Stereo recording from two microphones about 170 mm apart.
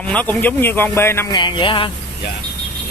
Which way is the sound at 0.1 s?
10° left (ahead or behind).